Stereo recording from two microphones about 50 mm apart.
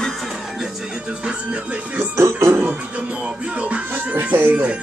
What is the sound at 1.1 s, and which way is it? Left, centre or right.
Music, right.